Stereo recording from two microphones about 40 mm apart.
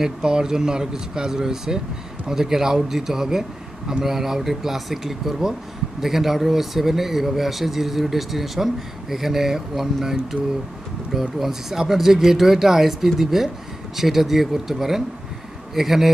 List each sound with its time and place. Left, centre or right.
0.2 s speech: centre
11.1 s speech: centre